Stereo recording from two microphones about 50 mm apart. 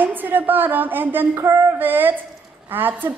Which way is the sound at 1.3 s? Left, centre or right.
Right.